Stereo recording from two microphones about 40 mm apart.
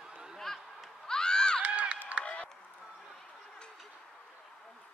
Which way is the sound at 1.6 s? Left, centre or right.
Right.